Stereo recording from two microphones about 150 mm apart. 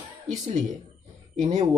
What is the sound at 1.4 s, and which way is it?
Speech, 50° right (ahead or behind).